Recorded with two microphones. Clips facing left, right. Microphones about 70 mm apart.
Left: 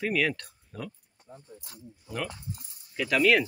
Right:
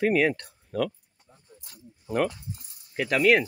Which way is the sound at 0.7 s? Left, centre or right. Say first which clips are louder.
Right 12 dB; right.